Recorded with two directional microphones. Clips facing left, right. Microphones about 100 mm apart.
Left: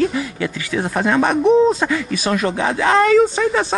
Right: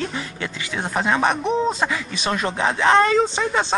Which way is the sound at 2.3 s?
30° right (ahead or behind).